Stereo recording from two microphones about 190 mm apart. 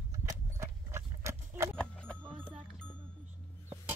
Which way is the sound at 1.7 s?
5° left (ahead or behind).